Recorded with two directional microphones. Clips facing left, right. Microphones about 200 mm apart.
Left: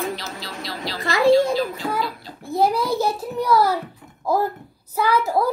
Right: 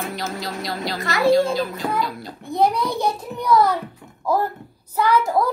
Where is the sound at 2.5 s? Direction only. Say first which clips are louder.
Even; 5° left (ahead or behind).